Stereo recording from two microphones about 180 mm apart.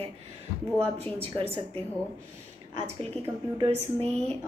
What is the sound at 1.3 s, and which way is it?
Speech, 35° right (ahead or behind).